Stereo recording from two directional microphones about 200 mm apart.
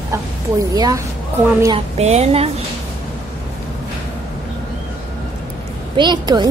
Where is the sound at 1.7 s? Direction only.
30° right (ahead or behind).